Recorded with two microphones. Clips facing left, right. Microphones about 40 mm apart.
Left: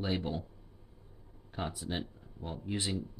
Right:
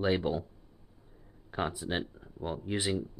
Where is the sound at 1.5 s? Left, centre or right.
Right.